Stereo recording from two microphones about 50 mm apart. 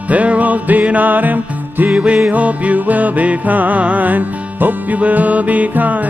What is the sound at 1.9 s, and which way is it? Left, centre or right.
Music, right.